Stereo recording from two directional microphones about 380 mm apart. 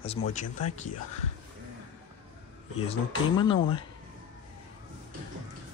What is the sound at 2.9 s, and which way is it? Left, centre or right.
Speech, centre.